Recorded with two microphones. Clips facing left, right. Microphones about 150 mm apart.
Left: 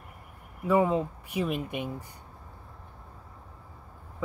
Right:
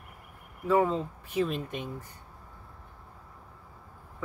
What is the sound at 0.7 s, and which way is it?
Speech, 15° left (ahead or behind).